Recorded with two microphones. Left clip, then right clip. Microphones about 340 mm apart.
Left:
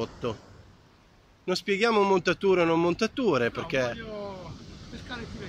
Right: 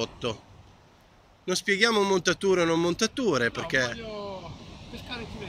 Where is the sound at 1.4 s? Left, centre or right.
Centre.